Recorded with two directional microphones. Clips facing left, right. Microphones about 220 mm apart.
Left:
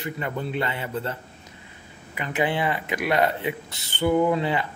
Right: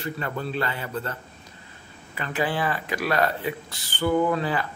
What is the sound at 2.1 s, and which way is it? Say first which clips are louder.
Speech: left 2 dB; 20° left (ahead or behind).